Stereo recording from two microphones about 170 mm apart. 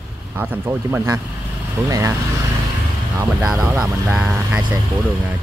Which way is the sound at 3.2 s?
5° right (ahead or behind).